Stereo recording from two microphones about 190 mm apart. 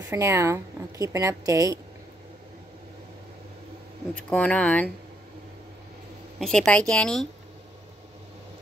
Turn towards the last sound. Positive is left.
turn(degrees=5)  # may be behind; listen again after turning